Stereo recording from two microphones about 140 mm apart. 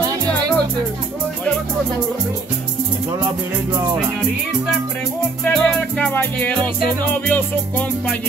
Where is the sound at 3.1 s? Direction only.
25° right (ahead or behind).